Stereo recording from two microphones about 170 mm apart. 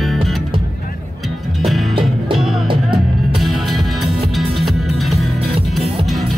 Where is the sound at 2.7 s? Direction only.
30° right (ahead or behind).